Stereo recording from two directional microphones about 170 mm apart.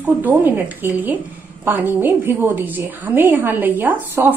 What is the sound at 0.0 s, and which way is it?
A woman's voice, 10° right (ahead or behind).